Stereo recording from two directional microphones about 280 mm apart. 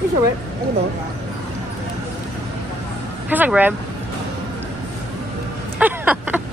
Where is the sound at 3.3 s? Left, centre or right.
Centre.